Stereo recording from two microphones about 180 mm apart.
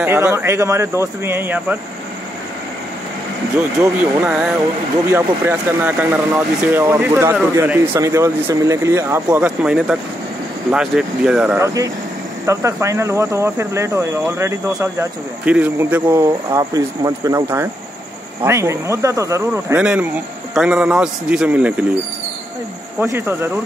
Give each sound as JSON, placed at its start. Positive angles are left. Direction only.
{"t": 0.0, "sound": "speech", "side_deg": -15}
{"t": 3.8, "sound": "speech", "side_deg": -10}
{"t": 22.9, "sound": "speech", "side_deg": -10}